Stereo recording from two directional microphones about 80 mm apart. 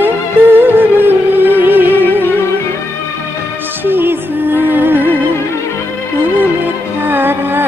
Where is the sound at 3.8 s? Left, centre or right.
Right.